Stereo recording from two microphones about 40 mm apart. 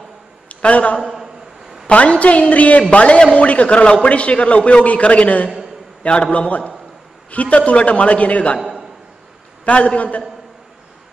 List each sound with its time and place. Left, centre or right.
0.5 s a man's voice: left
1.1 s a sound: centre
1.9 s a man's voice: left
9.7 s a man's voice: left